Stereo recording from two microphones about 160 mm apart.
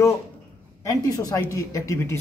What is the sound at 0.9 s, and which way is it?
Speech, 20° left (ahead or behind).